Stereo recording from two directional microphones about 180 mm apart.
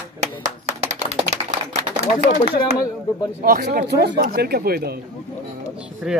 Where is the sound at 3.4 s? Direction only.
55° right (ahead or behind).